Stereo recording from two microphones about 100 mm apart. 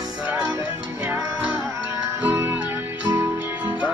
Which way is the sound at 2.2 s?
20° right (ahead or behind).